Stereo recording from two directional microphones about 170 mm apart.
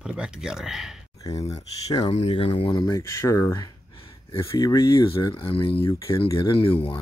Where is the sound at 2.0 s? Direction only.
40° left (ahead or behind).